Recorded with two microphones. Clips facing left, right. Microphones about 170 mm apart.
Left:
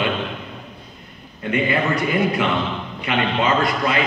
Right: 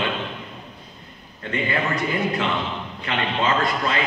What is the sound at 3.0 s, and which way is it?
A man's voice, 15° left (ahead or behind).